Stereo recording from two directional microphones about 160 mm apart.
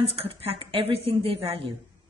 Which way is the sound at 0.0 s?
40° right (ahead or behind).